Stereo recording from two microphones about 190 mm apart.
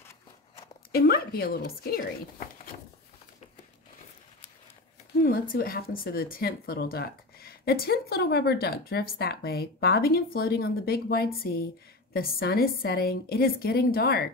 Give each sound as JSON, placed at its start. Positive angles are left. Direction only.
{"t": 0.9, "sound": "speech", "side_deg": 50}
{"t": 5.2, "sound": "speech", "side_deg": 50}